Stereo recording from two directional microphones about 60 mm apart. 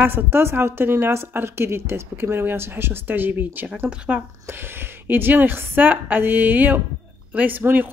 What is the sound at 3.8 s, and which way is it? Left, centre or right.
Speech, right.